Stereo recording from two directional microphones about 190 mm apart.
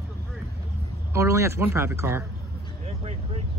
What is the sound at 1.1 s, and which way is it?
Speech, 15° right (ahead or behind).